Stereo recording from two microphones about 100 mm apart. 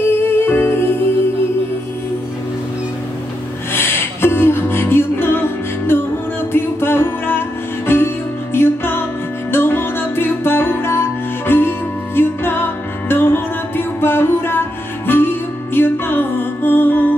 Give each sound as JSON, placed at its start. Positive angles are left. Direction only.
{"t": 0.0, "sound": "music", "side_deg": 25}
{"t": 3.7, "sound": "music", "side_deg": 25}